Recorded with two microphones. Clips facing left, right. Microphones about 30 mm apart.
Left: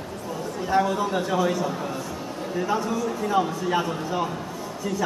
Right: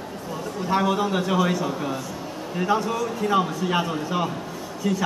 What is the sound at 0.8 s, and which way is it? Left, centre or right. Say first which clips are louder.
Speech: right 2 dB; right.